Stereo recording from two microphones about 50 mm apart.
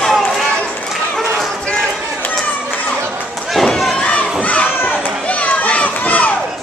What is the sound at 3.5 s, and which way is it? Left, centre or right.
Slam, centre.